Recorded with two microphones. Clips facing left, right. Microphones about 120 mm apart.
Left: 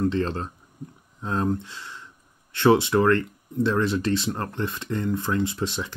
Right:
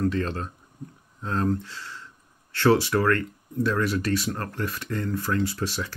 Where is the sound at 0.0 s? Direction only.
25° left (ahead or behind).